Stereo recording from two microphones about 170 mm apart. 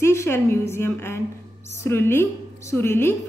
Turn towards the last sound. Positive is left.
turn(degrees=15)  # may be behind; listen again after turning